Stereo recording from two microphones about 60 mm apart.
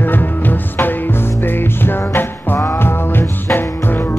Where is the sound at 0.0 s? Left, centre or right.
Left.